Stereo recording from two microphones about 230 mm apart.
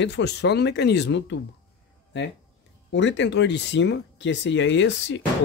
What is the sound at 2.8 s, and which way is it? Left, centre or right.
Speech, left.